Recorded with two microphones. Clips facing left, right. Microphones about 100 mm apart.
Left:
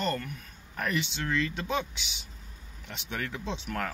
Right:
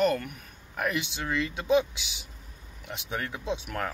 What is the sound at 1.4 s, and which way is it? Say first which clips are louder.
Speech: even; 10° right (ahead or behind).